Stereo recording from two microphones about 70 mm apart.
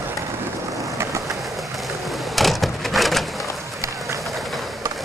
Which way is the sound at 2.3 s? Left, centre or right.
Centre.